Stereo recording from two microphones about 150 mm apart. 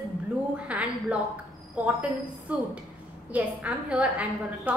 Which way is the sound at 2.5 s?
10° right (ahead or behind).